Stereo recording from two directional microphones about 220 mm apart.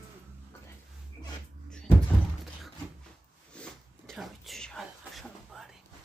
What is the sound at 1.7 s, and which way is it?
Door, 5° left (ahead or behind).